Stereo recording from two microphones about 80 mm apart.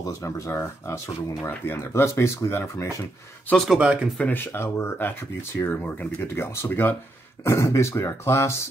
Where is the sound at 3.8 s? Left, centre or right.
Centre.